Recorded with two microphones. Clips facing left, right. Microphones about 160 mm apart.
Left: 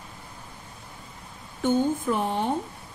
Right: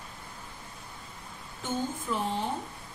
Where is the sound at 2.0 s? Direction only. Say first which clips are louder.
Left 5 dB; 60° left (ahead or behind).